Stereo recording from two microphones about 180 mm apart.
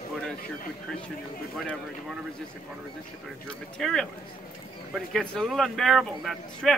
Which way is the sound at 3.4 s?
Centre (ahead or behind).